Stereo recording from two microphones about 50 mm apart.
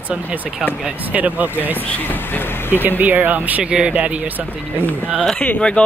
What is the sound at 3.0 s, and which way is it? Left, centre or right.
Speech, right.